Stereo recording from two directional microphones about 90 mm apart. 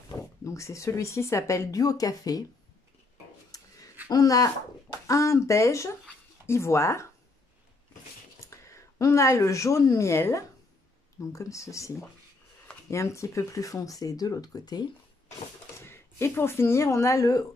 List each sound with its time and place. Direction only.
0.4 s speech: 35° left (ahead or behind)
3.5 s a sound: 45° left (ahead or behind)
4.1 s speech: 40° left (ahead or behind)
8.4 s speech: 35° left (ahead or behind)
15.8 s speech: 25° left (ahead or behind)